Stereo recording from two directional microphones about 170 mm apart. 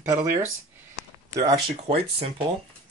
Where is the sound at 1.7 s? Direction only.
35° right (ahead or behind).